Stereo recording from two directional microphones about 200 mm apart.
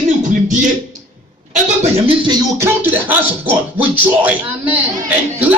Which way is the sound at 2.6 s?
10° right (ahead or behind).